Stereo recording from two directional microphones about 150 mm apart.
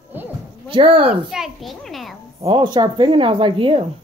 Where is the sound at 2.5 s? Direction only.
30° right (ahead or behind).